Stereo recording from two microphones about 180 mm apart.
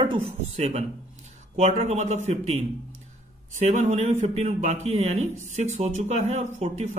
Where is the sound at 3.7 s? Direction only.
45° right (ahead or behind).